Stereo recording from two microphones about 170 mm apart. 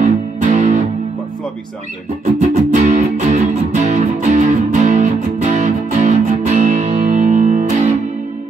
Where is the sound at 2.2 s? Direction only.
50° right (ahead or behind).